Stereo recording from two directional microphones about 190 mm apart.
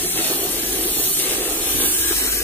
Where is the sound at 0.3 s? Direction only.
10° left (ahead or behind).